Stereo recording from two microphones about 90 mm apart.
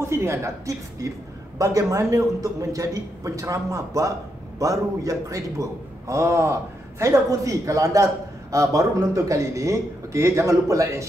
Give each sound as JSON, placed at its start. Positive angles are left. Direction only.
{"t": 0.0, "sound": "a man's voice", "side_deg": -30}